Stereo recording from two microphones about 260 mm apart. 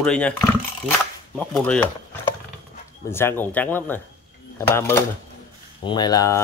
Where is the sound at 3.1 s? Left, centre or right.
Centre.